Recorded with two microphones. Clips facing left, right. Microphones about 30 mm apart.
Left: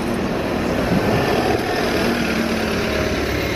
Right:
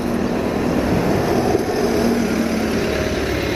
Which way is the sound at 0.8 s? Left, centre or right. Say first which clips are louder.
Even; left.